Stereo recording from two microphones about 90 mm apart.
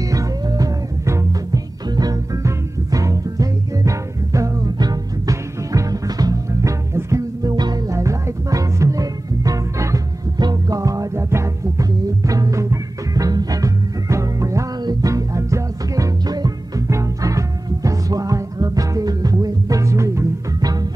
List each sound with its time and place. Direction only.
0.0 s music: 40° right (ahead or behind)
7.5 s music: 50° right (ahead or behind)